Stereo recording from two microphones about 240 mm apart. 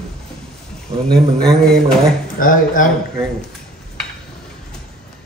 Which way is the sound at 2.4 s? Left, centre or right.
Left.